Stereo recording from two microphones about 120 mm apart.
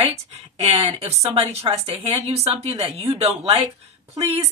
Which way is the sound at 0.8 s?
60° right (ahead or behind).